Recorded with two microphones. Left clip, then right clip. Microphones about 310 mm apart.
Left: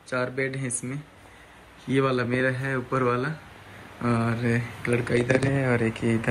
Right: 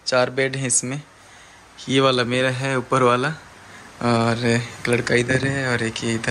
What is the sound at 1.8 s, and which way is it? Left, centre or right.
A man's voice, centre.